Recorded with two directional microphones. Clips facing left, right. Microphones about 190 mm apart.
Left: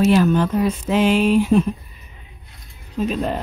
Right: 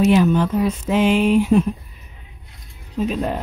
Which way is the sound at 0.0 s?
10° right (ahead or behind).